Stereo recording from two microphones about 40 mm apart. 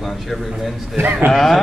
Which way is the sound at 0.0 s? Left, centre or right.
Centre.